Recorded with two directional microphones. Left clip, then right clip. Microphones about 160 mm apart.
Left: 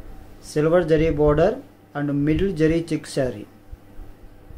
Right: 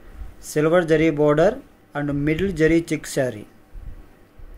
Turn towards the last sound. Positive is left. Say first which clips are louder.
# right 1 dB
turn(degrees=-50)  # may be behind; listen again after turning